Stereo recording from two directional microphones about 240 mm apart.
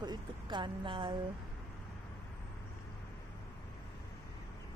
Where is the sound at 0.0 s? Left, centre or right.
Centre.